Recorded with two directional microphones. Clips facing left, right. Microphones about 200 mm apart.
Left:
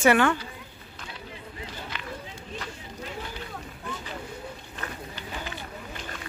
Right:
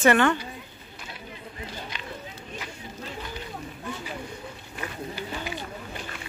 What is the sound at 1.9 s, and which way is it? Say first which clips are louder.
Run: left 1 dB; 15° right (ahead or behind).